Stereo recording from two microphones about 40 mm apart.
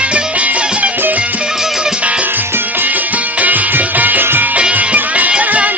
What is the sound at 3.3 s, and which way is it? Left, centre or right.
Music, right.